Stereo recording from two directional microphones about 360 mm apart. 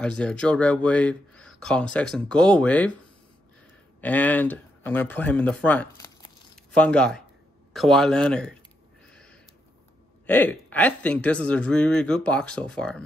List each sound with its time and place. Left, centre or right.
0.0 s speech: centre
4.0 s speech: centre
9.1 s a sound: centre
10.2 s speech: centre